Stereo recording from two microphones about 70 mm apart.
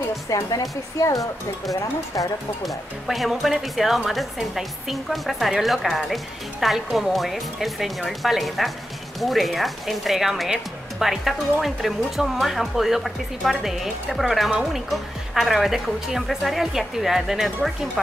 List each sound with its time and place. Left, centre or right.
0.3 s speech: left
2.6 s speech: centre